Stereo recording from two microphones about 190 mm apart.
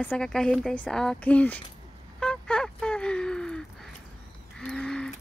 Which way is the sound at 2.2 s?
5° left (ahead or behind).